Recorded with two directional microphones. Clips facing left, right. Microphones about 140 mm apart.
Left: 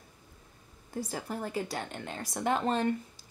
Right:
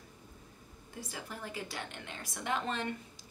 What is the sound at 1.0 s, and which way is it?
Speech, 40° left (ahead or behind).